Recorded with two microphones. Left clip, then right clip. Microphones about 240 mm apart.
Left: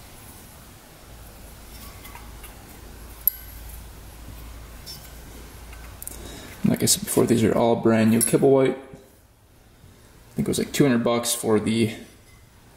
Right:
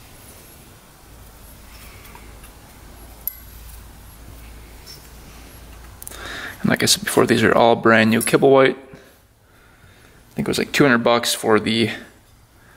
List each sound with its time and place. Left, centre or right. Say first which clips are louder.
6.7 s speech: right 6 dB; centre
10.3 s speech: right 5 dB; centre